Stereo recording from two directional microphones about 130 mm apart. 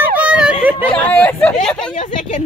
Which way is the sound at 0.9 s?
10° left (ahead or behind).